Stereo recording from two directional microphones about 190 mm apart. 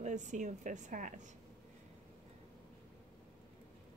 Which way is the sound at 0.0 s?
40° right (ahead or behind).